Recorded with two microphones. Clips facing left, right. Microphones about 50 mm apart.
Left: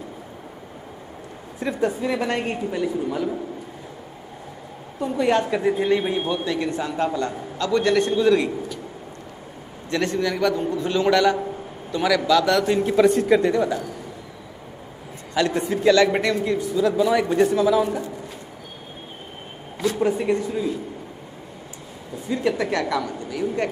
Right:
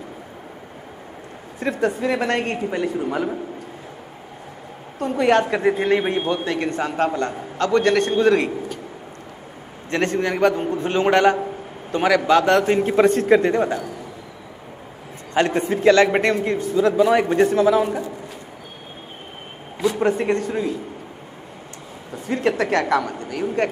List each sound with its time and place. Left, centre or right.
1.6 s a woman's voice: right
4.9 s a woman's voice: right
9.8 s a man's voice: right
15.3 s a man's voice: right
20.0 s a woman's voice: right
22.3 s a woman's voice: right